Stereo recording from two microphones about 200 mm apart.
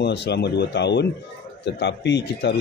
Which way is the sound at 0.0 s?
60° left (ahead or behind).